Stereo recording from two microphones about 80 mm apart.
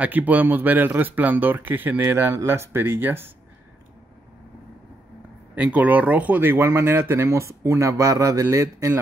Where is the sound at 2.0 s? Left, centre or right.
Right.